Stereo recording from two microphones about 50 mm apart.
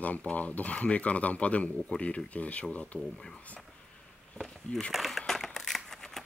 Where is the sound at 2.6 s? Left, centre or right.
Centre.